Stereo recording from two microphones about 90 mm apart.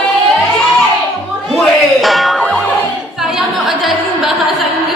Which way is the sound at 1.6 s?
Centre (ahead or behind).